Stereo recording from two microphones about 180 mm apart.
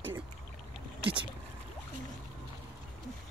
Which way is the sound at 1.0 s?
30° right (ahead or behind).